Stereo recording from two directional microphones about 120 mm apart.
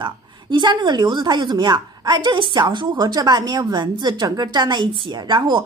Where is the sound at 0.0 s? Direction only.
40° right (ahead or behind).